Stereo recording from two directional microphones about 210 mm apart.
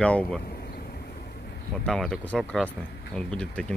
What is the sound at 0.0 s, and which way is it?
Speech, 5° left (ahead or behind).